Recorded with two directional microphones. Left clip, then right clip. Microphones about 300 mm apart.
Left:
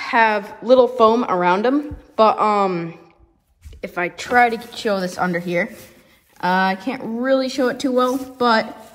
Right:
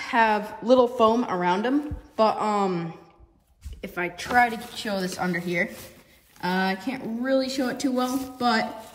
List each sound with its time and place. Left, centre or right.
0.0 s speech: centre
3.8 s a woman's voice: centre